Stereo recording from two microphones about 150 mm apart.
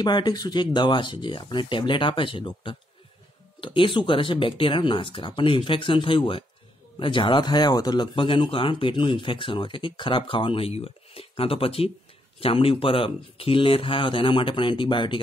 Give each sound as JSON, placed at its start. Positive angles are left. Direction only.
{"t": 0.0, "sound": "speech", "side_deg": 30}